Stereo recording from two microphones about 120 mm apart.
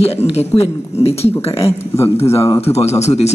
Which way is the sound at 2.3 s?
25° left (ahead or behind).